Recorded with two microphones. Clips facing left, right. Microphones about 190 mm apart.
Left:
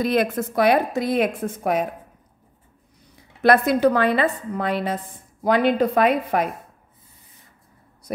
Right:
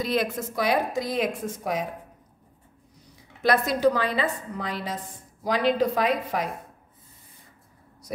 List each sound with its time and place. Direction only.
0.0 s a woman's voice: 55° left (ahead or behind)
3.4 s a woman's voice: 60° left (ahead or behind)